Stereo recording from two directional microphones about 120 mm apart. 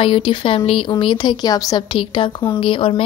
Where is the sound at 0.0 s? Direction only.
45° left (ahead or behind).